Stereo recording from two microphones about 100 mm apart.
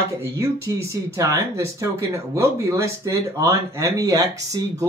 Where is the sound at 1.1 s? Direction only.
30° right (ahead or behind).